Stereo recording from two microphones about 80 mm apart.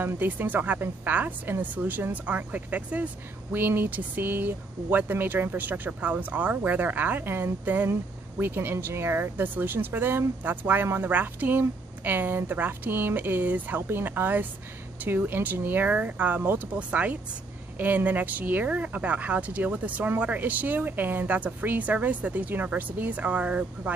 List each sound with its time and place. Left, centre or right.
0.0 s speech: right